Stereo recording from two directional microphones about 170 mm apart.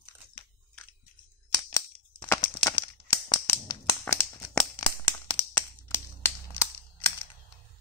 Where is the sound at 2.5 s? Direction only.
30° left (ahead or behind).